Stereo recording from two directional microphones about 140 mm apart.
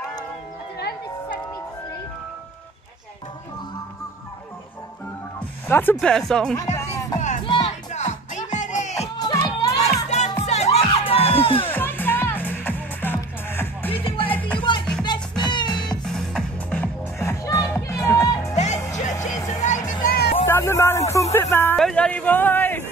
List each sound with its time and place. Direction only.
5.7 s speech: 15° left (ahead or behind)
5.9 s speech: 5° left (ahead or behind)
6.9 s music: 25° left (ahead or behind)
7.9 s music: 55° left (ahead or behind)
9.2 s music: 25° left (ahead or behind)
10.0 s music: 55° left (ahead or behind)
10.4 s crowd: 50° left (ahead or behind)
11.7 s music: 15° left (ahead or behind)
14.0 s music: 40° left (ahead or behind)
15.8 s music: 5° left (ahead or behind); by 18.5 s 20° left (ahead or behind)
18.5 s music: 55° left (ahead or behind); by 20.2 s 75° left (ahead or behind)
20.4 s a sound: 15° left (ahead or behind)
21.7 s a sound: 5° left (ahead or behind)